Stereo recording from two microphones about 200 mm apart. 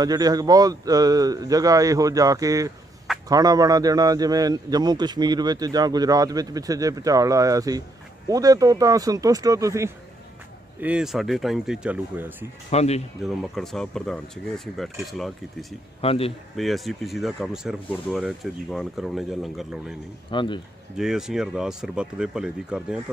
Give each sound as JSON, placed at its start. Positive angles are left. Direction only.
{"t": 0.0, "sound": "a man's voice", "side_deg": -20}
{"t": 10.8, "sound": "speech", "side_deg": -5}
{"t": 12.7, "sound": "speech", "side_deg": 30}
{"t": 13.2, "sound": "speech", "side_deg": 0}
{"t": 16.0, "sound": "speech", "side_deg": 30}
{"t": 16.5, "sound": "speech", "side_deg": 0}
{"t": 20.2, "sound": "speech", "side_deg": 25}
{"t": 21.0, "sound": "speech", "side_deg": 0}